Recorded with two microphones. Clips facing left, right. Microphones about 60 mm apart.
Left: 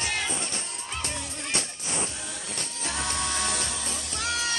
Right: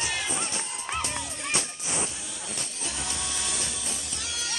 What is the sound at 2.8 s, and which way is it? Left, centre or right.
Music, left.